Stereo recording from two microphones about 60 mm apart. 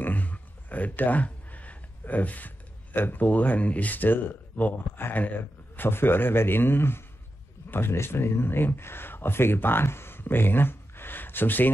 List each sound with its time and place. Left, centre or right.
0.0 s a man's voice: left